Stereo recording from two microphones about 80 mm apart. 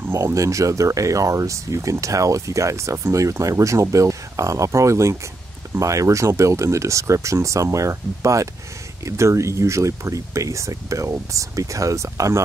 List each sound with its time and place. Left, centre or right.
0.1 s speech: right